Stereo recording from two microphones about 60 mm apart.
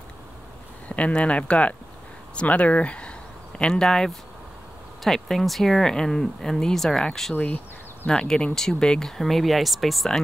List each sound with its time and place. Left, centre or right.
0.8 s speech: left
7.3 s speech: left
8.1 s speech: centre